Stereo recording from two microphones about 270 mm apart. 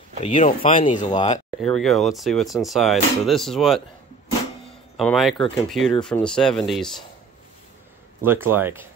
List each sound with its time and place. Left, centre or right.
0.2 s speech: left
1.6 s speech: centre
4.9 s speech: centre
8.2 s speech: centre